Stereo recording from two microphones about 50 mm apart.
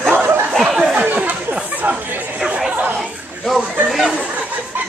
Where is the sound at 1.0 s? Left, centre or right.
Right.